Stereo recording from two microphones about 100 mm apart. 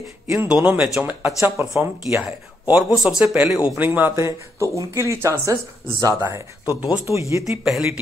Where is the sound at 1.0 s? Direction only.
25° right (ahead or behind).